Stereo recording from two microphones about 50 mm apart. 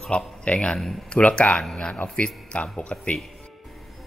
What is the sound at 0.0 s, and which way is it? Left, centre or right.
Speech, left.